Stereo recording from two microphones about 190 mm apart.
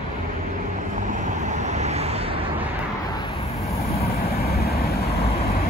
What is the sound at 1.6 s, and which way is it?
Vehicle, 35° right (ahead or behind).